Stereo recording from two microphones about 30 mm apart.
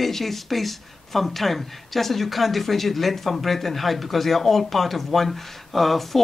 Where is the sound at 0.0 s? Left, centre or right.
Centre.